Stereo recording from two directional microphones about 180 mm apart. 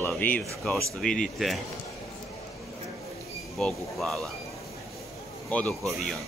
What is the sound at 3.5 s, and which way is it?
Speech, centre (ahead or behind).